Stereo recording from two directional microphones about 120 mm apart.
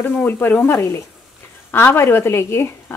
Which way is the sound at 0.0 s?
15° left (ahead or behind).